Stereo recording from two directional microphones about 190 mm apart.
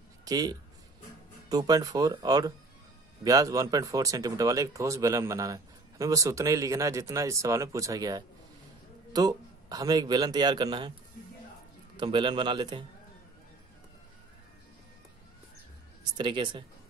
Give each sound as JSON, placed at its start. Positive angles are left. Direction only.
{"t": 0.2, "sound": "a man's voice", "side_deg": -20}
{"t": 12.0, "sound": "speech", "side_deg": -25}
{"t": 16.2, "sound": "speech", "side_deg": -25}